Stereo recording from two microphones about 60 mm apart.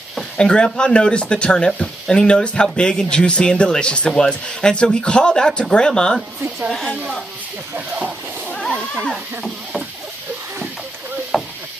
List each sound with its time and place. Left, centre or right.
0.4 s speech: centre
7.7 s speech: right
11.3 s a sound: centre